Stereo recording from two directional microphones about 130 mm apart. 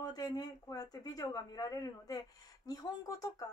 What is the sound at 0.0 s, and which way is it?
Speech, 30° left (ahead or behind).